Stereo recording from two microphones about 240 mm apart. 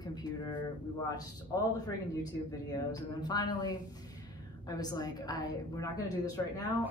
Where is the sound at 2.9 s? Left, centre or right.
Centre.